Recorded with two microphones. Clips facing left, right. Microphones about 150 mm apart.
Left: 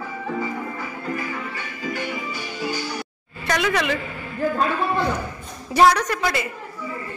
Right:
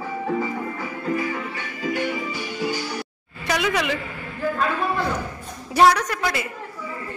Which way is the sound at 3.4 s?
10° right (ahead or behind).